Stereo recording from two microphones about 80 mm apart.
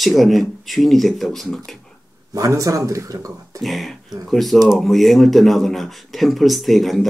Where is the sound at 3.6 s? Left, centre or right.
Centre.